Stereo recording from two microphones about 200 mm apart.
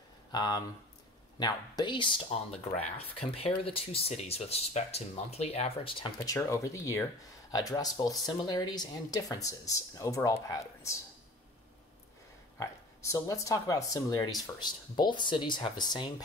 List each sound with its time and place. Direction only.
0.3 s speech: 20° left (ahead or behind)
12.5 s speech: 15° left (ahead or behind)